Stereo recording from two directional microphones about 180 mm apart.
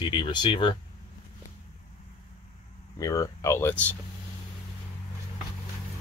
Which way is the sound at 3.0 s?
20° left (ahead or behind).